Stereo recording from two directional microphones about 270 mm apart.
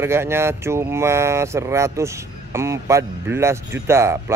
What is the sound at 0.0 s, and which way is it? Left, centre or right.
Speech, centre.